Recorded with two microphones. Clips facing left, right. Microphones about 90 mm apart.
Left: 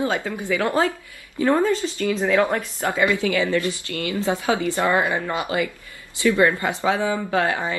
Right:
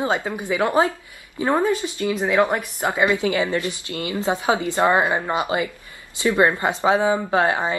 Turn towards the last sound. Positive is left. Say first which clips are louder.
# right 2 dB
turn(degrees=-20)  # may be behind; listen again after turning